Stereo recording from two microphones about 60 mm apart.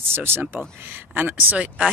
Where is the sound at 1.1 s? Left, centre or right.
Right.